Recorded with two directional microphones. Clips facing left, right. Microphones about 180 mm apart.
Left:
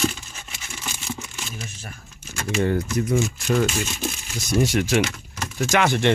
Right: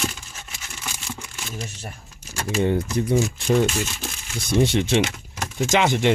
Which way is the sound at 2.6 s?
25° right (ahead or behind).